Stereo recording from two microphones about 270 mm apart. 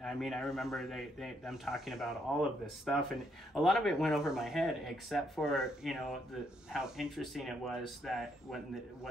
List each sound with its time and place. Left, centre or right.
0.0 s speech: centre